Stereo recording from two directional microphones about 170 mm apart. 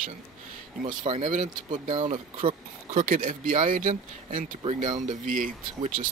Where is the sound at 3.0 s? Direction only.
55° right (ahead or behind).